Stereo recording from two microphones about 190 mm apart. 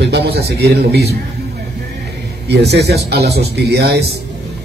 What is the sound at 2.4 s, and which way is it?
A man's voice, 60° right (ahead or behind).